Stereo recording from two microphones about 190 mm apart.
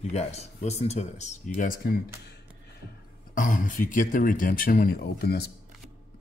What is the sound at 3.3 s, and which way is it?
Speech, 45° left (ahead or behind).